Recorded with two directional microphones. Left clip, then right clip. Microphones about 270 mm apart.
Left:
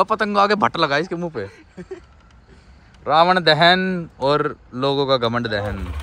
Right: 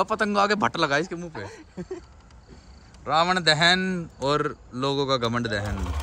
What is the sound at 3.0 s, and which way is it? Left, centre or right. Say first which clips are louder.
Speech: left 7 dB; centre.